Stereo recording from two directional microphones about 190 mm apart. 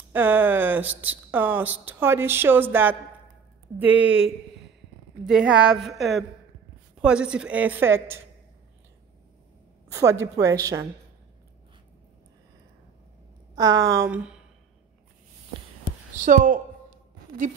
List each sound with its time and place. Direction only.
0.1 s speech: 10° right (ahead or behind)
5.2 s a woman's voice: 5° right (ahead or behind)
9.8 s speech: 15° right (ahead or behind)
13.6 s speech: 20° right (ahead or behind)
16.3 s a woman's voice: 45° right (ahead or behind)